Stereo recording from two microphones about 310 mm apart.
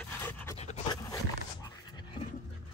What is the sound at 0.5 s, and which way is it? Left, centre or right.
Dog, left.